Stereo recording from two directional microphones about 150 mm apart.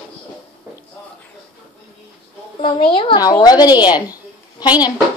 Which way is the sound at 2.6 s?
35° left (ahead or behind).